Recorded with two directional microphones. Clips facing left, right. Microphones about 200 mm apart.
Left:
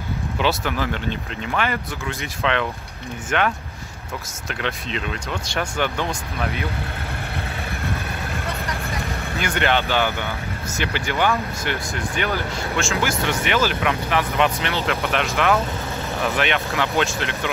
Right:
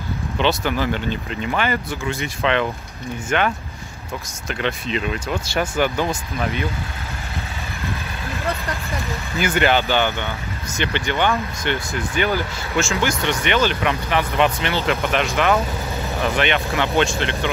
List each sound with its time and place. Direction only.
0.4 s speech: centre (ahead or behind)
9.4 s speech: 5° right (ahead or behind)